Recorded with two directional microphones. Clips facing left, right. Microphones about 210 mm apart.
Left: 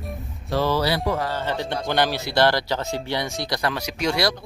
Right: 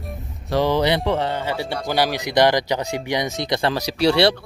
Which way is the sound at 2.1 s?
15° right (ahead or behind).